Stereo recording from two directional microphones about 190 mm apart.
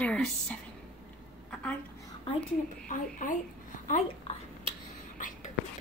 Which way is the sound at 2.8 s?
45° left (ahead or behind).